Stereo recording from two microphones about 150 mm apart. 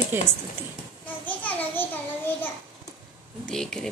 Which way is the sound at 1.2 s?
10° left (ahead or behind).